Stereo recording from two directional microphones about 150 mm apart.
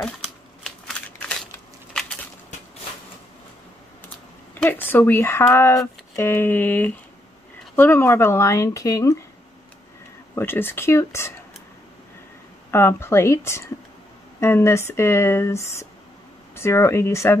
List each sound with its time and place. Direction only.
0.7 s shuffling cards: 5° left (ahead or behind)
2.5 s a sound: 55° left (ahead or behind)
4.6 s speech: 15° left (ahead or behind)
10.3 s speech: 15° left (ahead or behind)
12.7 s speech: 15° left (ahead or behind)